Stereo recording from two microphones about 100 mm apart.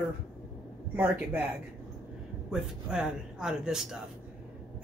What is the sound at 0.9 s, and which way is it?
Speech, 20° right (ahead or behind).